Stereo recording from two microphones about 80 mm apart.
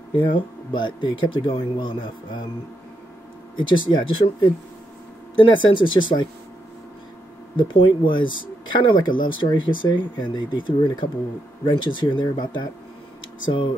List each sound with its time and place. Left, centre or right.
0.1 s speech: left
3.5 s speech: left
7.5 s speech: left